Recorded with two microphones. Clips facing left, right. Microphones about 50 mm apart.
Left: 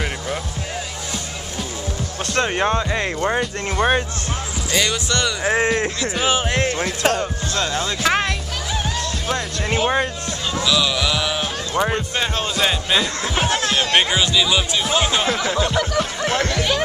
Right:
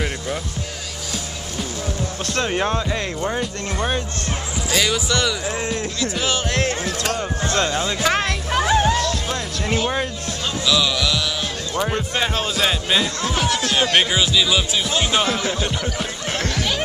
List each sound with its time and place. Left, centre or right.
2.3 s speech: centre; by 4.0 s left
4.7 s speech: centre
5.4 s speech: left
5.9 s speech: centre
7.4 s music: right
8.0 s speech: centre
10.6 s music: centre
12.2 s speech: centre
13.2 s speech: left
13.9 s speech: centre
16.0 s a sound: centre